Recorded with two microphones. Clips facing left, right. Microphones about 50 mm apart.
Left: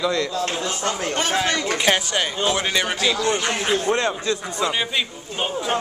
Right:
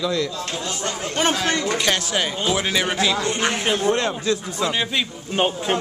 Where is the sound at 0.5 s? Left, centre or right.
Left.